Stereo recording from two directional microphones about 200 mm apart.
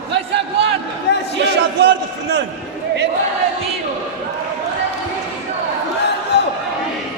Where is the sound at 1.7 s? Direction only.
60° right (ahead or behind).